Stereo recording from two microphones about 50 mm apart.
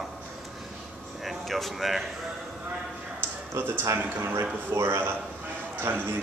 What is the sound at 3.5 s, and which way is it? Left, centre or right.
Speech, right.